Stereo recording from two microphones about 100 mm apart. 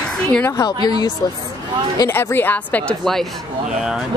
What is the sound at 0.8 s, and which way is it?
Speech, 45° left (ahead or behind).